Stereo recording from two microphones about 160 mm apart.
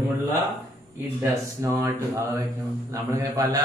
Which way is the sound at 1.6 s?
15° right (ahead or behind).